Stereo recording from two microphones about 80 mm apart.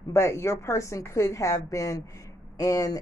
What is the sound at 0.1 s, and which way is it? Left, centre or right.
Speech, left.